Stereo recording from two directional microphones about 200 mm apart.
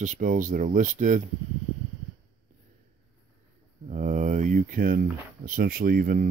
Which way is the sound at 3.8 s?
35° right (ahead or behind).